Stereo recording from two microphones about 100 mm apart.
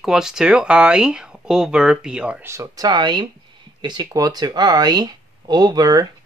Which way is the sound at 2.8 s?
50° right (ahead or behind).